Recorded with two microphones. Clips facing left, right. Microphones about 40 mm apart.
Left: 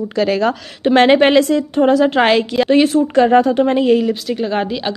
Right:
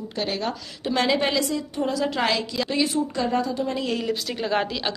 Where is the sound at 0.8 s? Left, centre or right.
Left.